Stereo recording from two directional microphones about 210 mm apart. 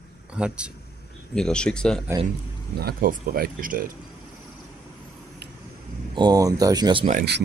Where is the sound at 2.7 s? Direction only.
45° right (ahead or behind).